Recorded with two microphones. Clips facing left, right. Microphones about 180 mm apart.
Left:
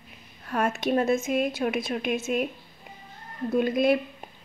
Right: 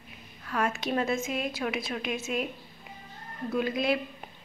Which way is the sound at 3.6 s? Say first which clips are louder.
Left 6 dB; 50° left (ahead or behind).